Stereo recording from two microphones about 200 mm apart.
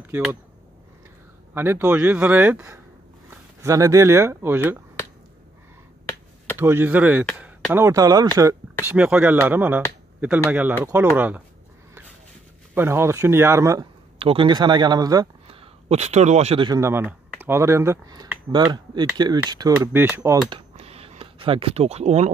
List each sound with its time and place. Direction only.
0.1 s speech: 10° right (ahead or behind)
1.5 s speech: 10° right (ahead or behind)
6.6 s speech: 10° right (ahead or behind)
8.8 s speech: 5° right (ahead or behind)
12.7 s speech: 10° right (ahead or behind)
14.1 s speech: 25° right (ahead or behind)
15.9 s speech: 35° right (ahead or behind); by 20.3 s 10° right (ahead or behind)
20.4 s a sound: 30° right (ahead or behind)